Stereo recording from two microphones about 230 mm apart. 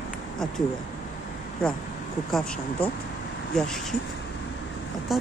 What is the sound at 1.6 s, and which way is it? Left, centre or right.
Speech, centre.